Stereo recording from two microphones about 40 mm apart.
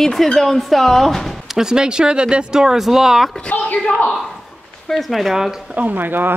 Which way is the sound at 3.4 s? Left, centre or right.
Left.